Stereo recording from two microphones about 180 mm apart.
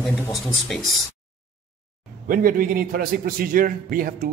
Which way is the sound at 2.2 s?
50° right (ahead or behind).